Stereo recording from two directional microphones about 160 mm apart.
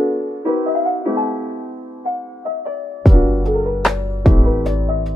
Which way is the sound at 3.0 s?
Centre (ahead or behind).